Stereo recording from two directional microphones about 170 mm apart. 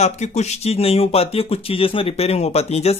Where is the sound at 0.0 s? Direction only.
40° left (ahead or behind).